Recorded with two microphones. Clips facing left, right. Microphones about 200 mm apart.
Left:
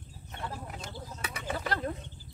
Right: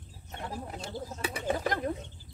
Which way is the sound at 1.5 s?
15° right (ahead or behind).